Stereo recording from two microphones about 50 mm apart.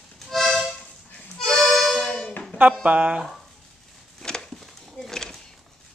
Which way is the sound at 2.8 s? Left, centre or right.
Right.